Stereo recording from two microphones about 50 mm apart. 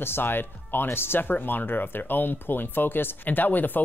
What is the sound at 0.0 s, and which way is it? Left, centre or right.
Speech, left.